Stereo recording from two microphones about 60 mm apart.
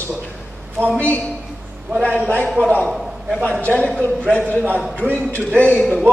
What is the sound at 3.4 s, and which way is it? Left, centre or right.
A man's voice, left.